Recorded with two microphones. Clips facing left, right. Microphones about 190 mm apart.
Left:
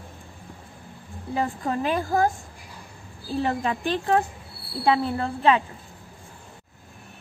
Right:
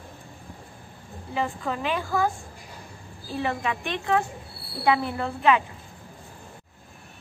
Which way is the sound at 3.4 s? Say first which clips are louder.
Left 2 dB; 35° left (ahead or behind).